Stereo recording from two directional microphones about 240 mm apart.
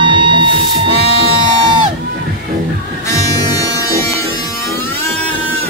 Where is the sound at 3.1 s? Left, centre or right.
Centre.